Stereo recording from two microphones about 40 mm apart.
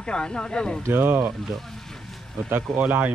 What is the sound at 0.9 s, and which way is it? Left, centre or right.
Speech, right.